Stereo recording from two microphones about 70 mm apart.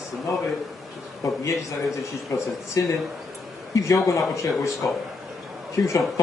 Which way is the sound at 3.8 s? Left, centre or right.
Left.